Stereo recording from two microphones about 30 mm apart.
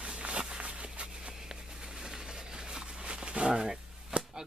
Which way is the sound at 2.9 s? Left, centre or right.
Right.